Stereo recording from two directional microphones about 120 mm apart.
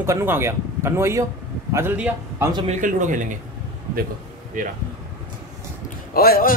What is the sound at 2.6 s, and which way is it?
Speech, 80° right.